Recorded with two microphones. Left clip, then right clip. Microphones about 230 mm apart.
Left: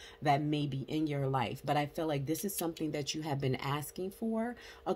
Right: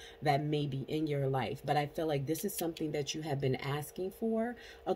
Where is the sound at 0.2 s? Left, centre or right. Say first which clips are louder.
Left 1 dB; centre.